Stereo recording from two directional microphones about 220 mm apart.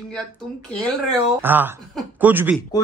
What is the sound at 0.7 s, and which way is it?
A man's voice, centre (ahead or behind).